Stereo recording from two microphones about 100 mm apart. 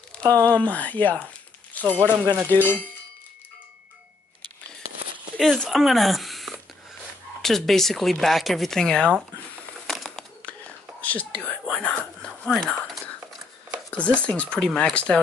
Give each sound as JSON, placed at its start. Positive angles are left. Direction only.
{"t": 0.2, "sound": "speech", "side_deg": -35}
{"t": 0.5, "sound": "speech", "side_deg": 15}
{"t": 1.2, "sound": "crumpling", "side_deg": 15}
{"t": 2.6, "sound": "speech", "side_deg": 20}
{"t": 5.4, "sound": "speech", "side_deg": 5}
{"t": 9.8, "sound": "crumpling", "side_deg": 5}
{"t": 11.0, "sound": "speech", "side_deg": 15}